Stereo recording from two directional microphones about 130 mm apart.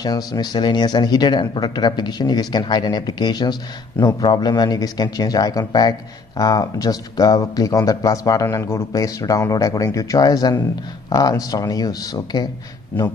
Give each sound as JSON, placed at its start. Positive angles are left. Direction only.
{"t": 0.0, "sound": "speech", "side_deg": 30}